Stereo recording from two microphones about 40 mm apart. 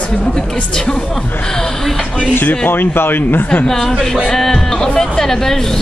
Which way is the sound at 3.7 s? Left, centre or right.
Centre.